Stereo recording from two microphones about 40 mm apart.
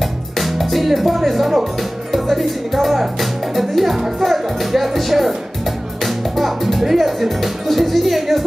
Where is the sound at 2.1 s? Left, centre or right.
Centre.